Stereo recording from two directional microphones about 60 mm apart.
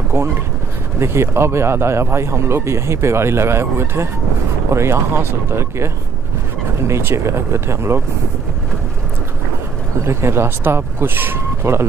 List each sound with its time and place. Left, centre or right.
0.9 s speech: right
6.9 s speech: right
10.0 s speech: right